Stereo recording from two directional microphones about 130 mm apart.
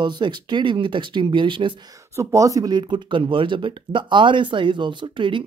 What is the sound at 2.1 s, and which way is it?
Speech, 25° right (ahead or behind).